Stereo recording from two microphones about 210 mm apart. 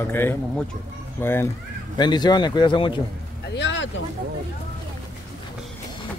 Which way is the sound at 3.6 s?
60° left (ahead or behind).